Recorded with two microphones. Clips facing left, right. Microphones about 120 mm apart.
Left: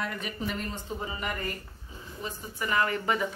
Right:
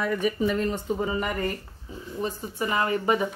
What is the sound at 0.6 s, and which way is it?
Speech, 65° right (ahead or behind).